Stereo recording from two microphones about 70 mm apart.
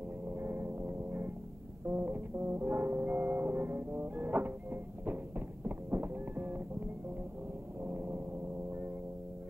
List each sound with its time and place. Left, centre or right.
0.3 s vehicle: right
1.9 s music: right
7.8 s gong: right